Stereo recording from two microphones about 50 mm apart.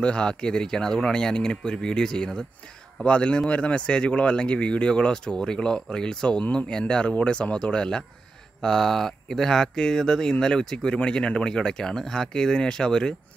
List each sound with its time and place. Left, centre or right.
0.0 s speech: centre